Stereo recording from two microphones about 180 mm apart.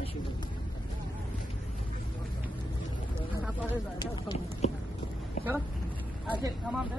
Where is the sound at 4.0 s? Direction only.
25° left (ahead or behind).